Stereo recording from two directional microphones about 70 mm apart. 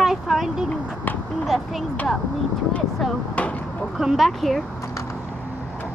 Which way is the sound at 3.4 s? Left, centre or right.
Left.